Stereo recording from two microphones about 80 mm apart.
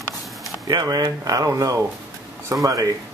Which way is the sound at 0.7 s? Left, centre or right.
Right.